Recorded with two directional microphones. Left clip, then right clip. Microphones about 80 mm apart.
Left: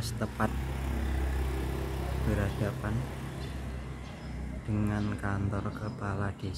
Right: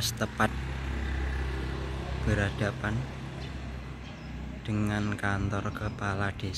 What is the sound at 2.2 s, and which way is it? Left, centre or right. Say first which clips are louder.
Speech: right 4 dB; right.